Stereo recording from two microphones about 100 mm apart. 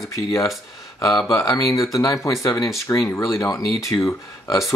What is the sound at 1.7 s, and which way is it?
Speech, 35° left (ahead or behind).